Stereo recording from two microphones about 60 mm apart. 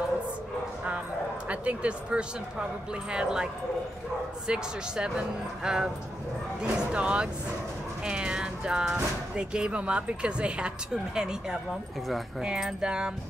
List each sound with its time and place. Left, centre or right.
1.5 s speech: right
4.5 s speech: centre